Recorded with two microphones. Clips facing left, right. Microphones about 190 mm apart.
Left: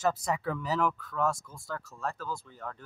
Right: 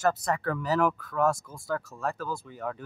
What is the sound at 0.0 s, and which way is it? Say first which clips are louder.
Speech: right 3 dB; 5° left (ahead or behind).